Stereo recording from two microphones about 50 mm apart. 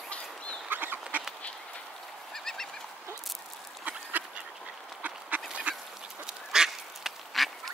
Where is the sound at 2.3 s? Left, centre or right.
Centre.